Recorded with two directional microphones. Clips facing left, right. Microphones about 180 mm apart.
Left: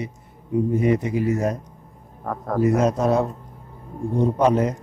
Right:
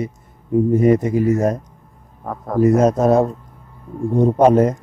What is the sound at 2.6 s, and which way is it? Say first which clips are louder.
A man's voice: right 6 dB; 45° right (ahead or behind).